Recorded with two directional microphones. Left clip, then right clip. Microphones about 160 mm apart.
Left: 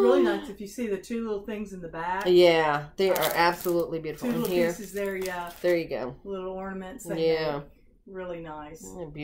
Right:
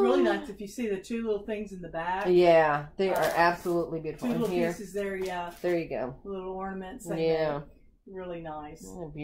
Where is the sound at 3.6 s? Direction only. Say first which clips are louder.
Left 3 dB; 20° right (ahead or behind).